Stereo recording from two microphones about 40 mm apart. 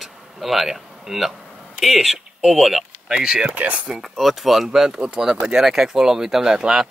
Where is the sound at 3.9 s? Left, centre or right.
Centre.